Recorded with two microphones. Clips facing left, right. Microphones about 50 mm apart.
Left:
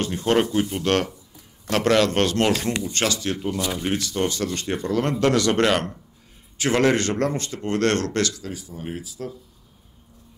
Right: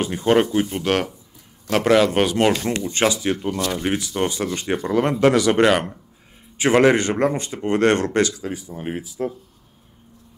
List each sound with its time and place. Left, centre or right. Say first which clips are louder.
0.0 s speech: right 3 dB; centre; by 9.3 s right